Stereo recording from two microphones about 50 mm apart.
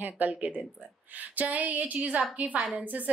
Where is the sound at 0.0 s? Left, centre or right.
Right.